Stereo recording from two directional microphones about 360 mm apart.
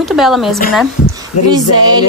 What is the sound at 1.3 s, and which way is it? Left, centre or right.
Speech, left.